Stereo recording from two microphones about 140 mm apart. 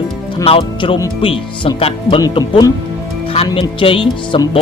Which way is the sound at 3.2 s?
40° left (ahead or behind).